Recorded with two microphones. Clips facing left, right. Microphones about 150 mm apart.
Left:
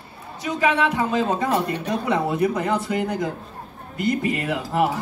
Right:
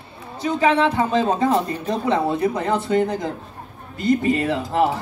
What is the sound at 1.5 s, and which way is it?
Speech, 70° left (ahead or behind).